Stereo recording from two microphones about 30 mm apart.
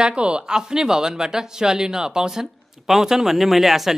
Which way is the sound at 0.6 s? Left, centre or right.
Right.